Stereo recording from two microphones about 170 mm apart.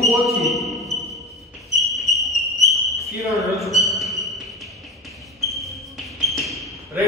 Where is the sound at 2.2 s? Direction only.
Centre (ahead or behind).